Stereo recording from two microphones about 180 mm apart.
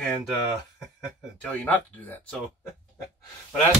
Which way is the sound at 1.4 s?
10° left (ahead or behind).